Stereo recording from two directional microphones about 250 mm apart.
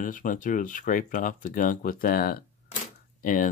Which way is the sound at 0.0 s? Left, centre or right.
Left.